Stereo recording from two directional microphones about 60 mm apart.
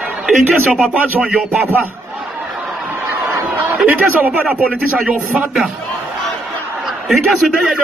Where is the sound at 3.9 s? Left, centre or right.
Right.